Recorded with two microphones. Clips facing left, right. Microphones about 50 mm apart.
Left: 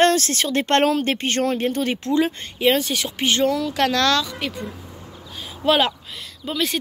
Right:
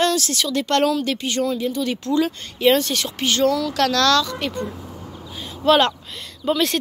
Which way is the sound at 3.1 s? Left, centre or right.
Left.